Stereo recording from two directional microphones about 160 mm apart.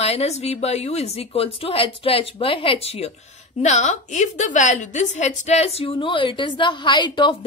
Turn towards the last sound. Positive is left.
turn(degrees=30)  # may be behind; listen again after turning